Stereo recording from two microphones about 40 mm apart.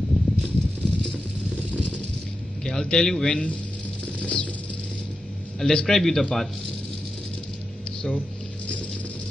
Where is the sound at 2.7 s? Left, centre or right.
Centre.